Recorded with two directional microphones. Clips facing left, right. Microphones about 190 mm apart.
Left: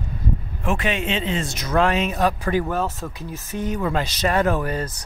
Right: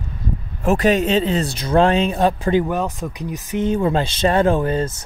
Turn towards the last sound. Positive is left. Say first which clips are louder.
# right 5 dB
turn(degrees=-25)  # may be behind; listen again after turning